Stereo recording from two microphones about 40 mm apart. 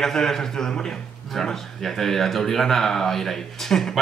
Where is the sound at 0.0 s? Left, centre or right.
Centre.